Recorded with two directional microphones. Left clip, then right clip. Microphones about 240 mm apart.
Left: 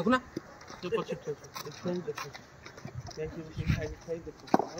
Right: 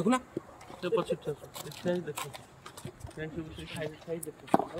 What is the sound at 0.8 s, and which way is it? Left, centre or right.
Speech, right.